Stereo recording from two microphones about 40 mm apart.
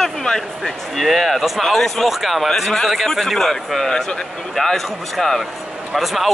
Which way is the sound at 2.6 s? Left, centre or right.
Centre.